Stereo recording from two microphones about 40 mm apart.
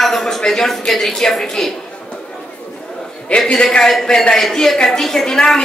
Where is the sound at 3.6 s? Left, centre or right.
Left.